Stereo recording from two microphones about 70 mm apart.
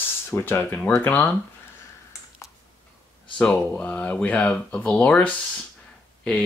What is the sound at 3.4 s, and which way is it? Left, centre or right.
Speech, centre.